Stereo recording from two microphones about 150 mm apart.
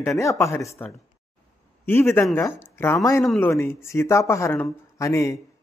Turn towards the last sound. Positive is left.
turn(degrees=20)  # may be behind; listen again after turning